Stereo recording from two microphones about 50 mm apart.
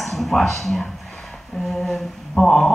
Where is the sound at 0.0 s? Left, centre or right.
Centre.